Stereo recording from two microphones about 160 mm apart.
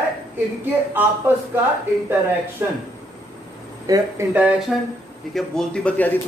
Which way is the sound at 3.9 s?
20° right (ahead or behind).